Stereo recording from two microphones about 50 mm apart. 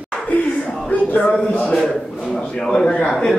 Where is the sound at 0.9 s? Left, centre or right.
Left.